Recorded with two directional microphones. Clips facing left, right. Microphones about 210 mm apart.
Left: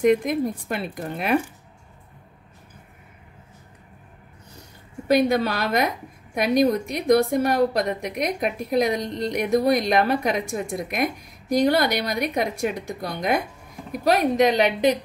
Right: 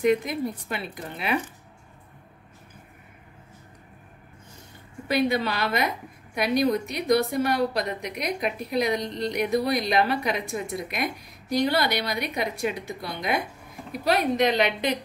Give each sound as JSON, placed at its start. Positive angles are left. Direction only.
{"t": 0.0, "sound": "a woman's voice", "side_deg": 50}
{"t": 5.0, "sound": "a woman's voice", "side_deg": 45}